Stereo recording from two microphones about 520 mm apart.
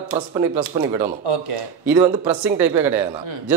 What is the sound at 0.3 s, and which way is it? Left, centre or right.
Speech, centre.